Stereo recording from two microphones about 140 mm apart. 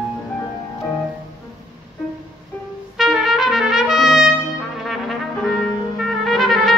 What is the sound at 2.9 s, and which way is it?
Trumpet, centre (ahead or behind).